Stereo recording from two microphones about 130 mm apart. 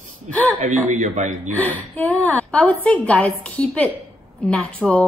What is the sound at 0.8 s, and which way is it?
Speech, 70° right (ahead or behind).